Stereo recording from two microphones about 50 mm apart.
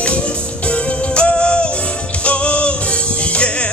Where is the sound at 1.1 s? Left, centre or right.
Left.